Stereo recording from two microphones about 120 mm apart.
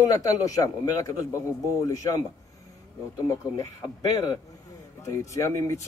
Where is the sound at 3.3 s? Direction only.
25° left (ahead or behind).